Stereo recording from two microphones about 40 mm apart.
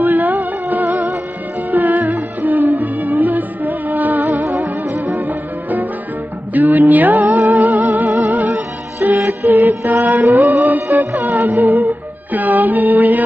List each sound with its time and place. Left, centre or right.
0.0 s music: right